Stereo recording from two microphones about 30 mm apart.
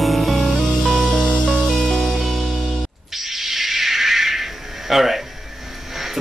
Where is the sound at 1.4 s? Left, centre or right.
Left.